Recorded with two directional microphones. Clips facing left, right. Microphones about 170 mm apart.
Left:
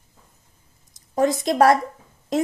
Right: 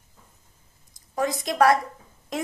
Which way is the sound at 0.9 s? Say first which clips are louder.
Left 6 dB; 25° left (ahead or behind).